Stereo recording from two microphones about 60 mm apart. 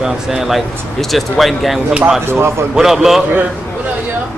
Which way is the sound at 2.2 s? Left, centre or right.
Right.